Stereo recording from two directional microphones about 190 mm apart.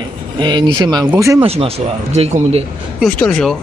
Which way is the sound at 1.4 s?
30° right (ahead or behind).